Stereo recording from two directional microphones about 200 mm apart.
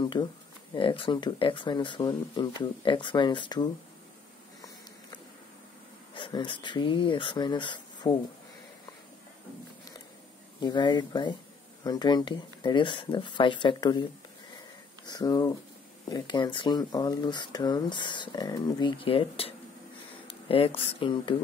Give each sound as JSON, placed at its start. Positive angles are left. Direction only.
{"t": 0.0, "sound": "speech", "side_deg": 20}
{"t": 6.1, "sound": "speech", "side_deg": 25}
{"t": 10.6, "sound": "speech", "side_deg": 20}
{"t": 15.0, "sound": "speech", "side_deg": 20}